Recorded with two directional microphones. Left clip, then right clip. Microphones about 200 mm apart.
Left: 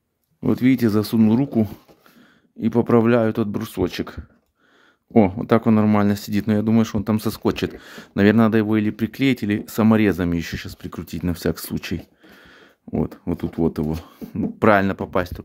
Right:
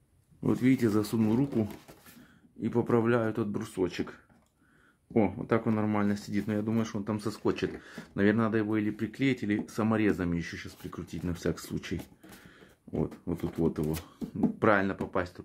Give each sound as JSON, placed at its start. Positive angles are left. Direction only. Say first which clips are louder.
{"t": 0.4, "sound": "speech", "louder": "left 8 dB", "side_deg": 50}